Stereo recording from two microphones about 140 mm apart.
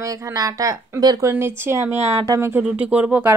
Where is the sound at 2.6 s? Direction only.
5° right (ahead or behind).